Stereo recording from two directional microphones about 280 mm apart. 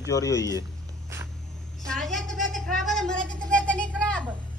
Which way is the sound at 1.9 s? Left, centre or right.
Centre.